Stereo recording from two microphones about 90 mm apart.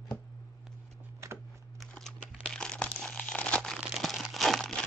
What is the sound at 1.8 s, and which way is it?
Crumpling, 5° left (ahead or behind).